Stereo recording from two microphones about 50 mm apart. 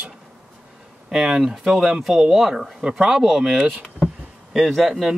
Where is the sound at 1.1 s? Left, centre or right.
Centre.